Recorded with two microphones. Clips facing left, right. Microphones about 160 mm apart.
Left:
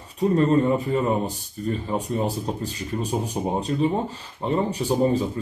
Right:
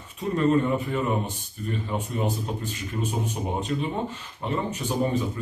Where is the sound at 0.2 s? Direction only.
40° left (ahead or behind).